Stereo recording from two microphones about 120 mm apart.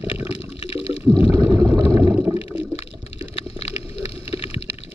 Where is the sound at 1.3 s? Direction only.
25° right (ahead or behind).